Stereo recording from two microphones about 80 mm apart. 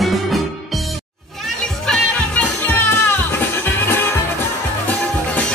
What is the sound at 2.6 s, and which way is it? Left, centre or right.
Music, left.